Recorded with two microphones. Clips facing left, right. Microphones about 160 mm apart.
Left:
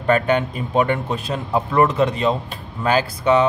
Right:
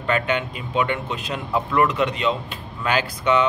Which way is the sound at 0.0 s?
40° left (ahead or behind).